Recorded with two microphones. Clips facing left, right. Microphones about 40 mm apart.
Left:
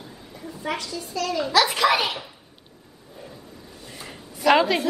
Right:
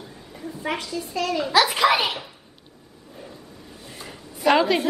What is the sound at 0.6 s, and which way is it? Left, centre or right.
Speech, right.